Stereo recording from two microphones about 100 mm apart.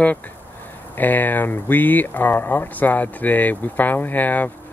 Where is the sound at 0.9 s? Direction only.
20° left (ahead or behind).